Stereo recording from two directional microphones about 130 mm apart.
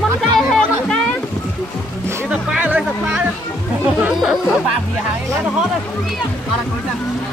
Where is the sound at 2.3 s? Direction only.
10° right (ahead or behind).